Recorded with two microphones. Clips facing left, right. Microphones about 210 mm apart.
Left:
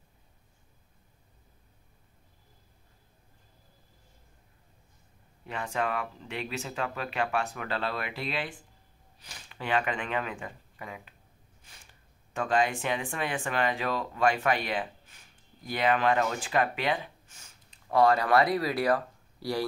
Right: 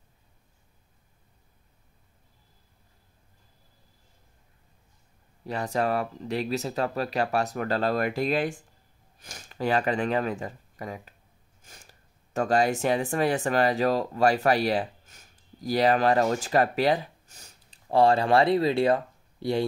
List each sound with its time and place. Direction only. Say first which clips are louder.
5.4 s speech: right 5 dB; 35° right (ahead or behind)